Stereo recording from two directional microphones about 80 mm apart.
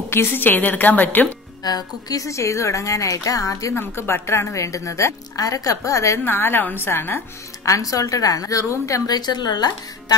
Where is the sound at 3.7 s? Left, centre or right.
Left.